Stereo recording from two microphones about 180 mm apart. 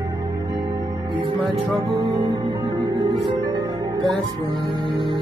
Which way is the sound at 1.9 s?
20° right (ahead or behind).